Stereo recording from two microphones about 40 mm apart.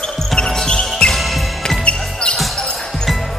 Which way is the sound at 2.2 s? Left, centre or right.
Left.